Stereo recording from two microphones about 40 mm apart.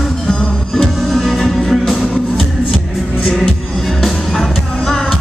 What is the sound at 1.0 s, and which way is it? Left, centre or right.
Music, centre.